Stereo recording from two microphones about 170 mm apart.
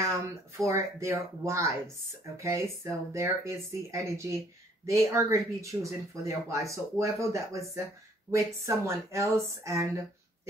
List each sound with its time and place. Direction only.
0.0 s speech: 15° right (ahead or behind)